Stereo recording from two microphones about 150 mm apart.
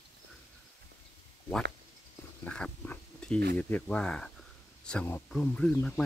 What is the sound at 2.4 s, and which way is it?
Insect, 10° left (ahead or behind).